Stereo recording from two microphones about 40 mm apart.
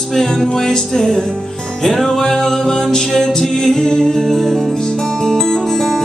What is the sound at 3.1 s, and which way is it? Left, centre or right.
Music, centre.